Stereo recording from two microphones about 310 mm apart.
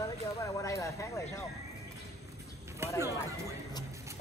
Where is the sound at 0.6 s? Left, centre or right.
Centre.